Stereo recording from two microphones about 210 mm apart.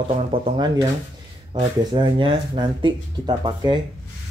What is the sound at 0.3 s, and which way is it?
Speech, 20° right (ahead or behind).